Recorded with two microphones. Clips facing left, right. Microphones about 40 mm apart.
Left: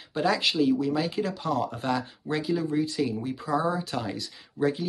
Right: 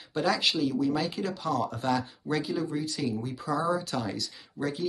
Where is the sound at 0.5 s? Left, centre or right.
Left; by 4.6 s centre.